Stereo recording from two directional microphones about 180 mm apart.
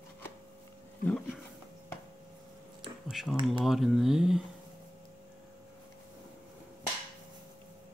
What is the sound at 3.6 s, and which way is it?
Speech, centre (ahead or behind).